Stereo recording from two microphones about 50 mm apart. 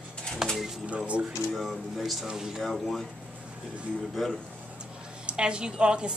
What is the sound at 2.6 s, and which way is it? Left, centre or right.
Speech, centre.